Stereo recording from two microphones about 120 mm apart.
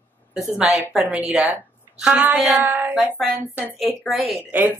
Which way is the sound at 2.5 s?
15° right (ahead or behind).